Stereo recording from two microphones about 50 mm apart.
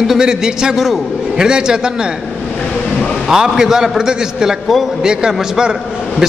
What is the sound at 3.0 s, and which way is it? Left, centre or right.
A man's voice, centre.